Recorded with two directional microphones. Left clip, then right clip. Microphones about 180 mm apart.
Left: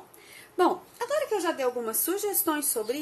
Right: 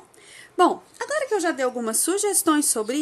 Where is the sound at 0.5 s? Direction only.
35° right (ahead or behind).